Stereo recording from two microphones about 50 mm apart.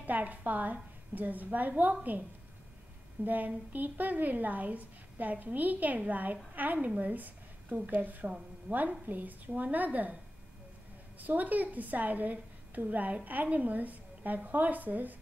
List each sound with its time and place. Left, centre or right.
0.0 s a woman's voice: right
3.3 s a woman's voice: right
11.1 s a woman's voice: right